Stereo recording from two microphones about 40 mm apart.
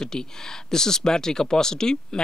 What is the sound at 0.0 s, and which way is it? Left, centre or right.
Speech, centre.